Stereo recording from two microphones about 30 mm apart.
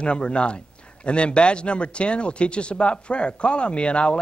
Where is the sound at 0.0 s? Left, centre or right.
Left.